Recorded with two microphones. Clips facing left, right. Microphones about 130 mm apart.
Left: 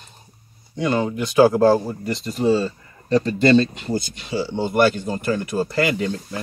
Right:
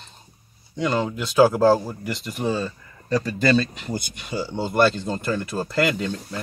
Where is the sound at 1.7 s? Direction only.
15° left (ahead or behind).